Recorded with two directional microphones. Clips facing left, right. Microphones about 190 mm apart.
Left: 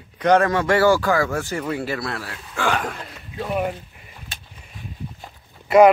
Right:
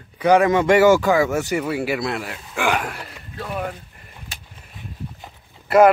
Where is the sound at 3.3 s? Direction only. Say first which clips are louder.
Left 4 dB; 15° left (ahead or behind).